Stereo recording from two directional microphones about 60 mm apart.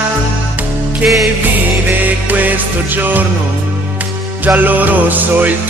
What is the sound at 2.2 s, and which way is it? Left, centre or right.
Music, right.